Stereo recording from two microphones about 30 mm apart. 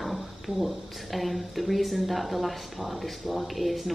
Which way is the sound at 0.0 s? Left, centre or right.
Centre.